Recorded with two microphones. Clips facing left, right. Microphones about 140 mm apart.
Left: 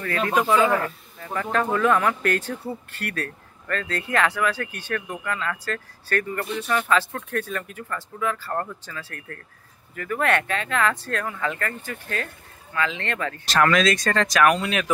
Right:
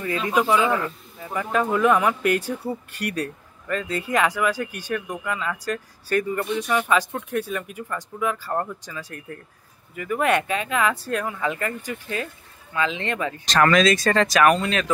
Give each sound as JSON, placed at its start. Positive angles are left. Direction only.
{"t": 1.2, "sound": "speech", "side_deg": -10}
{"t": 13.5, "sound": "speech", "side_deg": 0}